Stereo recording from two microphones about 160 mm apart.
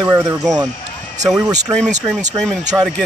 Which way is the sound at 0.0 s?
25° right (ahead or behind).